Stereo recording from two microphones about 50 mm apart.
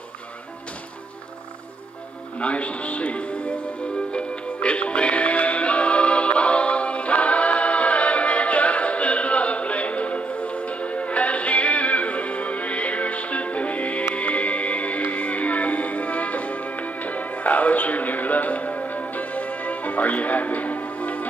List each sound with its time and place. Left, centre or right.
2.3 s speech: left
4.1 s music: left